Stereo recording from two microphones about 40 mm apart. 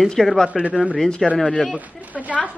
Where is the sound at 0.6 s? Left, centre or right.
Right.